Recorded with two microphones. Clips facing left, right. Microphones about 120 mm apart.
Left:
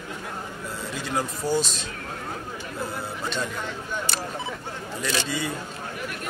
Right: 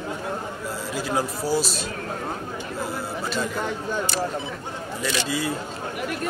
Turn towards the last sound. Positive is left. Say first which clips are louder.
# right 2 dB
turn(degrees=0)  # may be behind; listen again after turning